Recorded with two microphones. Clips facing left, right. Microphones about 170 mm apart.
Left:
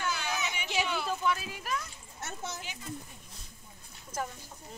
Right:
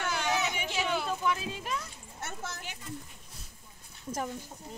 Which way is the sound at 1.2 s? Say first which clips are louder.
Even; 20° right (ahead or behind).